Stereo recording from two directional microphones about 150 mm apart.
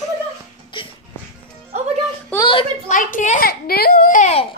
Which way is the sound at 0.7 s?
35° left (ahead or behind).